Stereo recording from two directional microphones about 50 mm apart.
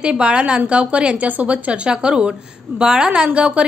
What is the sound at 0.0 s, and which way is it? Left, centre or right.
A woman's voice, right.